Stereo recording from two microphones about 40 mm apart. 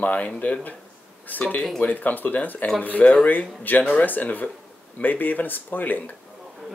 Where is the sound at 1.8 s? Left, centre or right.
Left.